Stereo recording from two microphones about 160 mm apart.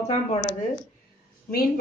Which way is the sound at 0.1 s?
40° left (ahead or behind).